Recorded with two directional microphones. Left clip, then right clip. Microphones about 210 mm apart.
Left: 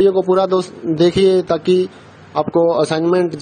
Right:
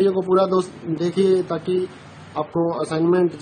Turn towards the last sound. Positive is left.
turn(degrees=35)  # may be behind; listen again after turning